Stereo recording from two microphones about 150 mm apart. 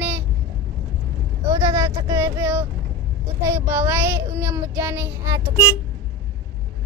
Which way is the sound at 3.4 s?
15° right (ahead or behind).